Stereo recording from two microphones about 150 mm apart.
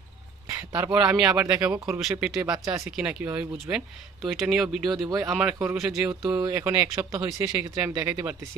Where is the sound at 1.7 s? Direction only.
20° right (ahead or behind).